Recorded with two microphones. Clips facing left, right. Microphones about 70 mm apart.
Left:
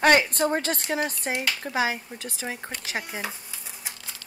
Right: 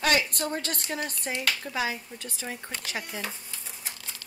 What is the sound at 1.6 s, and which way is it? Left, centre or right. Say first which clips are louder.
Speech: left 5 dB; left.